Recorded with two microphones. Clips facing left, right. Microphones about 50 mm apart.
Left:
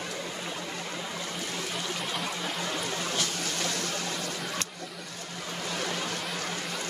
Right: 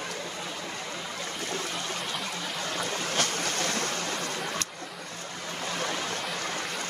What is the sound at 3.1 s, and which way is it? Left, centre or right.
Boat, right.